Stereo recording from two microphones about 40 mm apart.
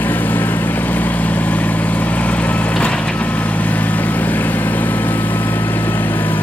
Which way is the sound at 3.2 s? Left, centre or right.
Left.